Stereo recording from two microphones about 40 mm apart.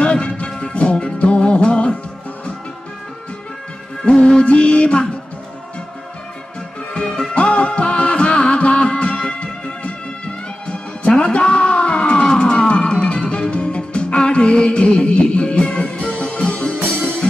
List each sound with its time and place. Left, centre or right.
0.0 s music: left
4.1 s music: left
6.9 s music: left